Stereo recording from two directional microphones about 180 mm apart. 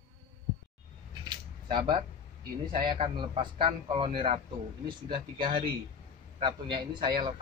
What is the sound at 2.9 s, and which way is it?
A man's voice, 30° right (ahead or behind).